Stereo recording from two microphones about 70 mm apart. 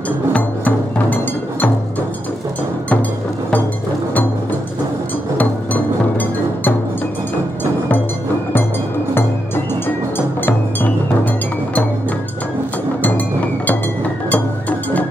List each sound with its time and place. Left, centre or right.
0.3 s music: left
5.4 s music: left
10.1 s music: left
13.7 s music: left